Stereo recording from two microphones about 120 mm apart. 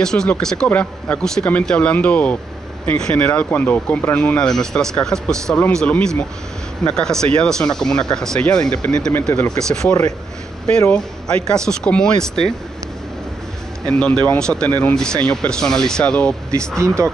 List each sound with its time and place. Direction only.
0.0 s speech: 5° left (ahead or behind)
11.5 s speech: 5° left (ahead or behind)
13.8 s speech: 10° left (ahead or behind)
16.7 s speech: 25° right (ahead or behind)